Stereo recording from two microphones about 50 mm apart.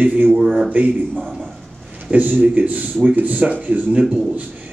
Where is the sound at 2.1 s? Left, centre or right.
Right.